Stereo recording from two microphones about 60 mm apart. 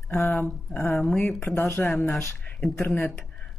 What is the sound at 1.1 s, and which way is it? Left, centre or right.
Speech, centre.